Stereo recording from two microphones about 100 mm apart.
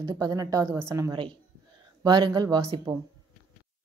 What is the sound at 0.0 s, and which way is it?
A woman's voice, 40° right (ahead or behind).